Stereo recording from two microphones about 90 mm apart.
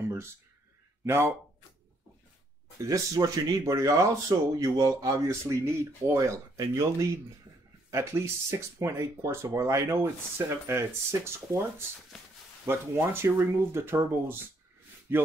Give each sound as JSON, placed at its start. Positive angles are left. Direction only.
{"t": 0.0, "sound": "a sound", "side_deg": -30}
{"t": 1.0, "sound": "speech", "side_deg": -25}
{"t": 2.8, "sound": "speech", "side_deg": -35}
{"t": 12.6, "sound": "speech", "side_deg": -25}